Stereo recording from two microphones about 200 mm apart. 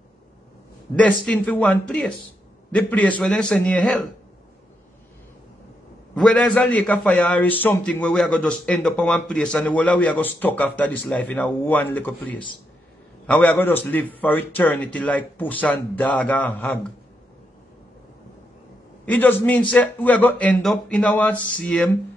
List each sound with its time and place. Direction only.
0.9 s a man's voice: 5° left (ahead or behind)
6.1 s a man's voice: 5° left (ahead or behind)
19.0 s a man's voice: 10° left (ahead or behind)